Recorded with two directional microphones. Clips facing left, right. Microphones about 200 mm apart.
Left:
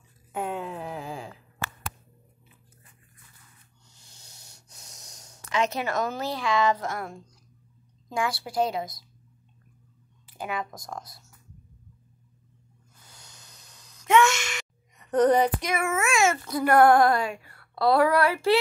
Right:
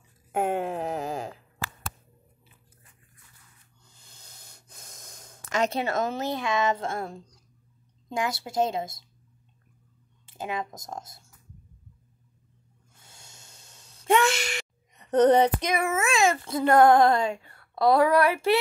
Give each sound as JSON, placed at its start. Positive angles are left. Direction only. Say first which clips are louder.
{"t": 0.3, "sound": "a sound", "louder": "right 5 dB", "side_deg": -50}
{"t": 4.1, "sound": "breathing", "louder": "right 2 dB", "side_deg": -55}
{"t": 5.5, "sound": "speech", "louder": "right 1 dB", "side_deg": -35}
{"t": 10.2, "sound": "speech", "louder": "even", "side_deg": -25}
{"t": 12.9, "sound": "a sound", "louder": "even", "side_deg": -25}
{"t": 15.0, "sound": "speech", "louder": "right 2 dB", "side_deg": -25}
{"t": 16.1, "sound": "speech", "louder": "even", "side_deg": -35}